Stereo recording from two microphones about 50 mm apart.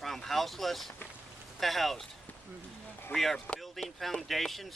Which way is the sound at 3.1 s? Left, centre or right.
Centre.